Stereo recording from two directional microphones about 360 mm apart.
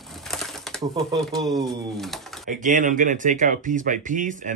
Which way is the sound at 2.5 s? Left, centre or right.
Right.